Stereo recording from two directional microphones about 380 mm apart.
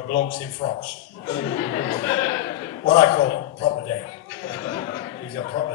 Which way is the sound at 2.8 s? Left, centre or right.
Centre.